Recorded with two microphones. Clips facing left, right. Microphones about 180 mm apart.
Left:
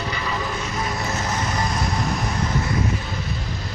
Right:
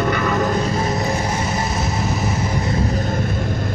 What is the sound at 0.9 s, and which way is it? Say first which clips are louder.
Vehicle: right 6 dB; 15° right (ahead or behind).